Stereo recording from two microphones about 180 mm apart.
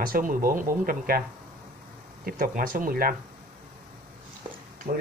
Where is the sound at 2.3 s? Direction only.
50° right (ahead or behind).